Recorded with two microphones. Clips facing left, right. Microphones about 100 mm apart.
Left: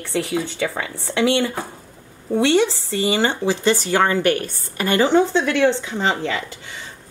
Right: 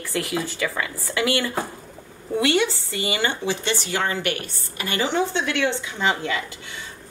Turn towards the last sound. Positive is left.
turn(degrees=35)  # may be behind; listen again after turning